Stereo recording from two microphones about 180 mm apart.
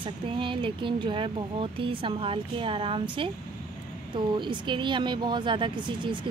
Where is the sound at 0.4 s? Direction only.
30° right (ahead or behind).